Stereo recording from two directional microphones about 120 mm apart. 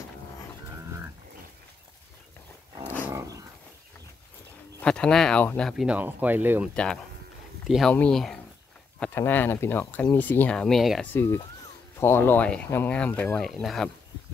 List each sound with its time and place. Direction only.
3.1 s dog: 25° right (ahead or behind)
4.8 s speech: 5° left (ahead or behind)
5.9 s speech: 15° right (ahead or behind)
6.7 s speech: 5° left (ahead or behind)
9.0 s speech: 20° left (ahead or behind); by 11.1 s centre (ahead or behind)
11.1 s speech: 20° left (ahead or behind); by 13.8 s centre (ahead or behind)